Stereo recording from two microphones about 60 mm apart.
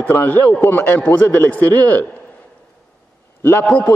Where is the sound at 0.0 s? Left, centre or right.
Left.